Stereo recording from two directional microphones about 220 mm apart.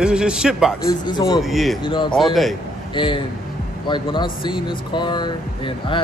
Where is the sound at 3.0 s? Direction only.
20° left (ahead or behind).